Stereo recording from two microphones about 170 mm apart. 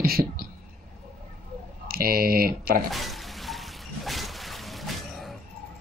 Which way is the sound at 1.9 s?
60° right (ahead or behind).